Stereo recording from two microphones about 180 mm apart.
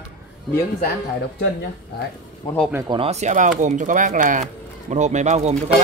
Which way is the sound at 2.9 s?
35° right (ahead or behind).